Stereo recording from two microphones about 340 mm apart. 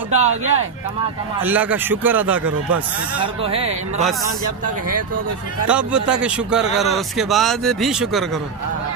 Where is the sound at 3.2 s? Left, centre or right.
Centre.